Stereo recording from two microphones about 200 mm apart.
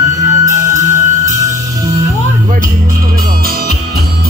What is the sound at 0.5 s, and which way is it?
Music, 15° right (ahead or behind).